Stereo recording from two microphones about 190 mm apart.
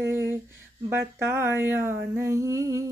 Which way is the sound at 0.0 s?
10° right (ahead or behind).